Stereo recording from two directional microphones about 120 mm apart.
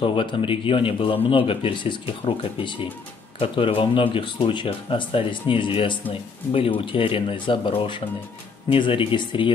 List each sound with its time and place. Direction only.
0.0 s speech: 45° left (ahead or behind)